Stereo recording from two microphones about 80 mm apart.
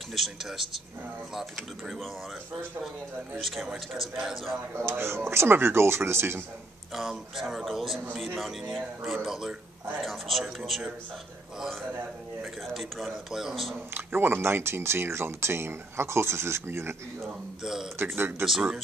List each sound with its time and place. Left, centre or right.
0.1 s speech: centre
3.3 s speech: centre
4.8 s speech: right
6.9 s speech: centre
12.6 s speech: centre
13.9 s speech: right
17.3 s speech: centre
17.9 s speech: right
18.4 s speech: centre